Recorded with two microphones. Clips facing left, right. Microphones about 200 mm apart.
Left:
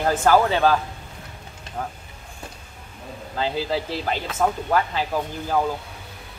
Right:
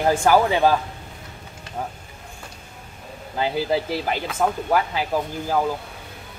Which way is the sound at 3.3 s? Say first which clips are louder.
Right 2 dB; 15° right (ahead or behind).